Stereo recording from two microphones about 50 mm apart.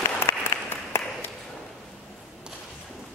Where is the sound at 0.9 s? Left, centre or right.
Left.